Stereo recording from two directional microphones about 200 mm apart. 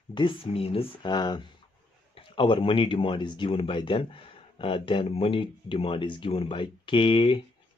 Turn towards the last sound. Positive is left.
turn(degrees=25)  # may be behind; listen again after turning